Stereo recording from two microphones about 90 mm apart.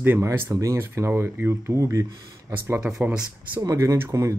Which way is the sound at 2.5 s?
25° right (ahead or behind).